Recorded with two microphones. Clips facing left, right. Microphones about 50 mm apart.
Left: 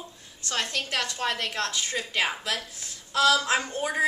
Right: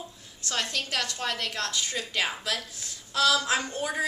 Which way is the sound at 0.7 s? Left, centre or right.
Centre.